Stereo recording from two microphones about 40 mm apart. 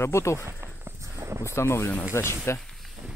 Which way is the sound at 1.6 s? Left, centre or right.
Left.